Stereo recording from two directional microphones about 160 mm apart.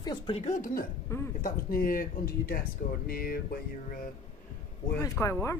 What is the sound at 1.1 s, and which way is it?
Speech, 15° left (ahead or behind).